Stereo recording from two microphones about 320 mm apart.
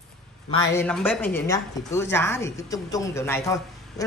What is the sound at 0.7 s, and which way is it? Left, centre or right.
A woman's voice, centre.